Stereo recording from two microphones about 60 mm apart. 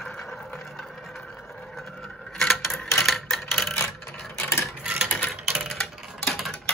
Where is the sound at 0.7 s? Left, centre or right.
Centre.